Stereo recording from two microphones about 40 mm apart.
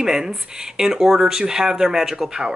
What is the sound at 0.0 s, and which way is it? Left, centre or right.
Speech, centre.